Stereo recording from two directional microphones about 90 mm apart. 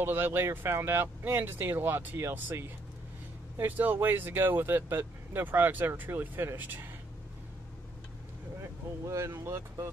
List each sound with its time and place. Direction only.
0.0 s speech: 20° right (ahead or behind)
9.0 s speech: 35° right (ahead or behind)